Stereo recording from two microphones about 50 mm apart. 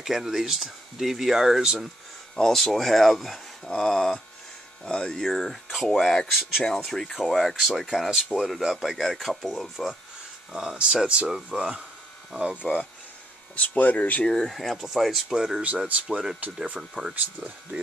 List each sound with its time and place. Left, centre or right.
0.0 s speech: centre
2.3 s speech: centre
3.7 s speech: centre
10.5 s speech: centre
13.6 s speech: left
14.2 s speech: centre; by 17.7 s right